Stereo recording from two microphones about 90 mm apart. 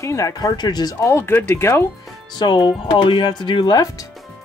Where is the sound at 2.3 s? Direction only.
55° left (ahead or behind).